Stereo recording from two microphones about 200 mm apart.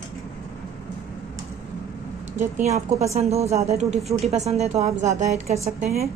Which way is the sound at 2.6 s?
35° right (ahead or behind).